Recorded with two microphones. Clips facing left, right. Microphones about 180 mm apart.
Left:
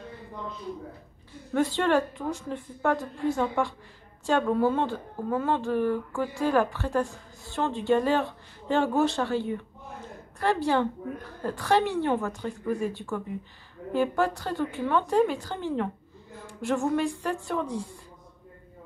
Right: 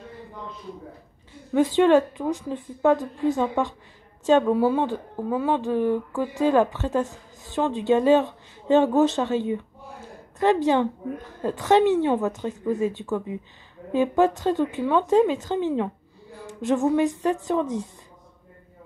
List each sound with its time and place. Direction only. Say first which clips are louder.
1.5 s a woman's voice: right 6 dB; 15° right (ahead or behind)